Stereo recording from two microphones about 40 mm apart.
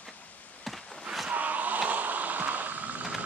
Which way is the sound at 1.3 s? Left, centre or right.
Right.